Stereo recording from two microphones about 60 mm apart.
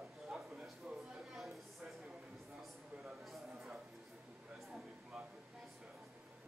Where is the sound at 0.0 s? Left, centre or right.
Centre.